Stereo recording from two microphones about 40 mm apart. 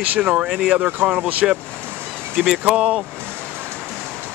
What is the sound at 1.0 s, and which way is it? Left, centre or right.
Speech, right.